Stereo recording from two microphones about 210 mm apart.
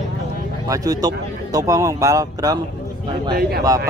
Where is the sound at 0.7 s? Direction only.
15° right (ahead or behind).